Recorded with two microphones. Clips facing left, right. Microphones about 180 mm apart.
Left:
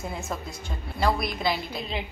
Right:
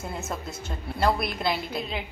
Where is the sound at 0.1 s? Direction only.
5° right (ahead or behind).